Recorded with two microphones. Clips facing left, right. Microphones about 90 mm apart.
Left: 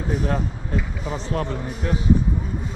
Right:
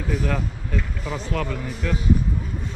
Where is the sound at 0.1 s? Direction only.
40° left (ahead or behind).